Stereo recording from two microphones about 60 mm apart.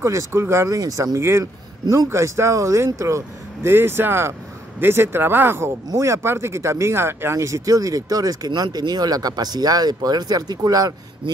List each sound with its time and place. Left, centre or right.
0.0 s speech: right
0.7 s speech: right
2.1 s speech: right
3.7 s speech: right
5.9 s speech: right